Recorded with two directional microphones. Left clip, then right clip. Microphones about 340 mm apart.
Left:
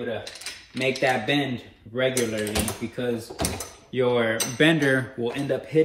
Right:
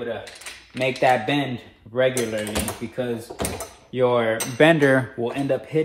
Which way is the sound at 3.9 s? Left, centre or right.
Centre.